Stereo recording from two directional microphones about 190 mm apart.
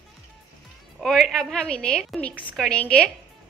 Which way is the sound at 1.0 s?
Centre (ahead or behind).